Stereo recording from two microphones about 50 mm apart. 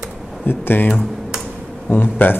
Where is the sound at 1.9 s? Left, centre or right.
Left.